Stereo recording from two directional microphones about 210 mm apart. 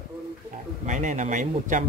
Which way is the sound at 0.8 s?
35° right (ahead or behind).